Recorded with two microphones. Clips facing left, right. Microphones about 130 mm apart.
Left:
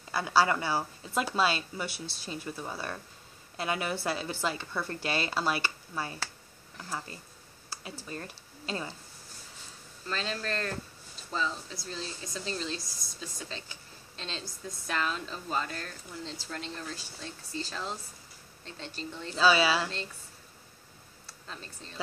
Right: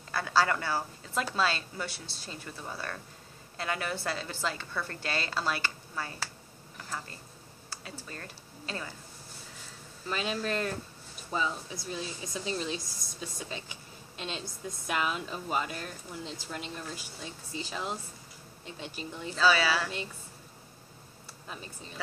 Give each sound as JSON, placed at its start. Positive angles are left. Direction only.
{"t": 0.1, "sound": "a woman's voice", "side_deg": 15}
{"t": 8.1, "sound": "speech", "side_deg": 20}
{"t": 10.0, "sound": "speech", "side_deg": -10}
{"t": 14.4, "sound": "a woman's voice", "side_deg": -25}
{"t": 15.0, "sound": "speech", "side_deg": -10}
{"t": 19.3, "sound": "a woman's voice", "side_deg": 20}
{"t": 21.5, "sound": "speech", "side_deg": -10}